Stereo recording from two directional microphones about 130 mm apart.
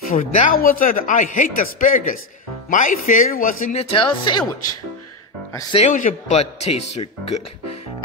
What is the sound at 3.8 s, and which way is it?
Speech, 45° left (ahead or behind).